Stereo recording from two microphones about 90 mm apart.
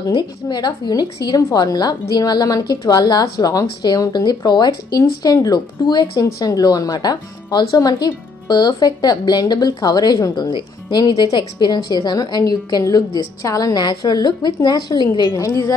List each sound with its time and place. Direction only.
0.1 s speech: 55° left (ahead or behind)
10.4 s speech: 60° left (ahead or behind)
15.3 s a woman's voice: 40° left (ahead or behind)